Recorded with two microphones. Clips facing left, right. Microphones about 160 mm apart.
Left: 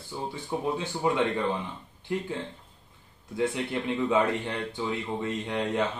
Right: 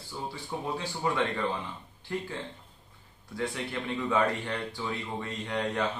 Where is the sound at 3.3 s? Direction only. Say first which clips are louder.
Left 5 dB; 20° left (ahead or behind).